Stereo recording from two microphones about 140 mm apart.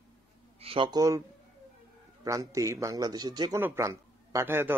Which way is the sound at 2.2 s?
25° right (ahead or behind).